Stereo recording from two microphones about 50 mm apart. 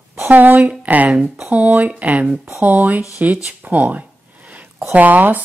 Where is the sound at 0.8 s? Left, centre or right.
Right.